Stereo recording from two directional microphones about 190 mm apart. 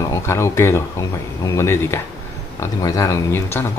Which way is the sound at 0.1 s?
15° left (ahead or behind).